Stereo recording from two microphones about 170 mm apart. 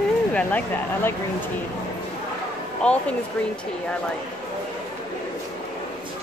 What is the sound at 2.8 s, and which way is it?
Speech, 5° left (ahead or behind).